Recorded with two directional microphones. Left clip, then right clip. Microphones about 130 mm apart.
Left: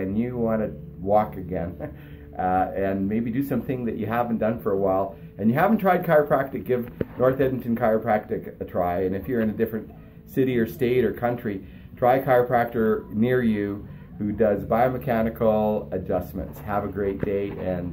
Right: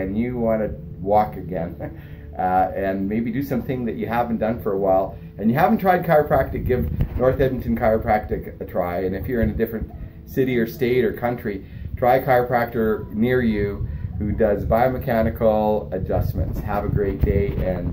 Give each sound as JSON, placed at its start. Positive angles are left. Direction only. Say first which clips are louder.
{"t": 0.0, "sound": "speech", "louder": "right 3 dB", "side_deg": 25}